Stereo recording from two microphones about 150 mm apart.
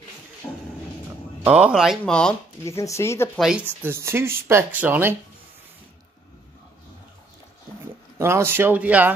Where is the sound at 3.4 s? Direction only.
5° right (ahead or behind).